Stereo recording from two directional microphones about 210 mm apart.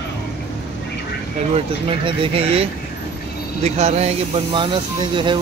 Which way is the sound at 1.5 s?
25° right (ahead or behind).